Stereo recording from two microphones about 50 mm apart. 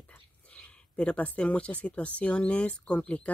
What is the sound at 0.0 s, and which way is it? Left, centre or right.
Speech, left.